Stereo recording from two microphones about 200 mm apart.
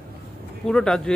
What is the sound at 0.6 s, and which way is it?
Speech, 5° left (ahead or behind).